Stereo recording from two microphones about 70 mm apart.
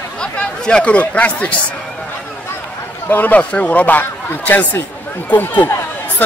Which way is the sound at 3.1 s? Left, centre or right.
Left.